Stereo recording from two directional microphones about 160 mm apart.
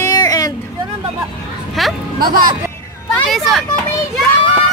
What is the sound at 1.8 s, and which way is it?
Speech, centre (ahead or behind).